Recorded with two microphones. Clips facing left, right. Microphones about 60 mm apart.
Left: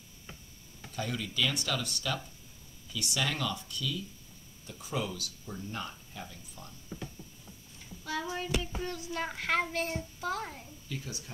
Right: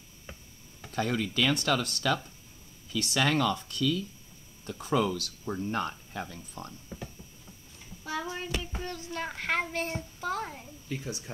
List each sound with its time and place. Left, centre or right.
0.9 s speech: right
8.1 s child singing: centre
8.8 s a child's voice: centre
10.9 s speech: right